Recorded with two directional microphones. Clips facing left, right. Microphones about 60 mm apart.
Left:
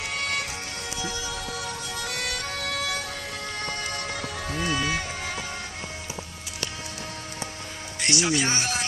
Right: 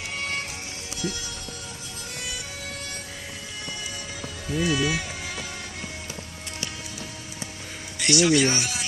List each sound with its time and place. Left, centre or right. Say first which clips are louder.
0.1 s music: left 1 dB; right
1.6 s music: left 7 dB; left
3.6 s music: left 4 dB; left
4.6 s speech: right 3 dB; left
8.0 s speech: right 5 dB; left